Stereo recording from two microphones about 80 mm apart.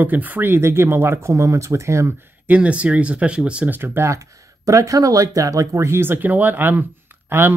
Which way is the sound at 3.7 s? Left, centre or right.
Right.